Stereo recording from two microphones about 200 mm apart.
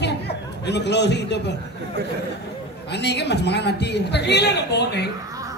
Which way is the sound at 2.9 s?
55° left (ahead or behind).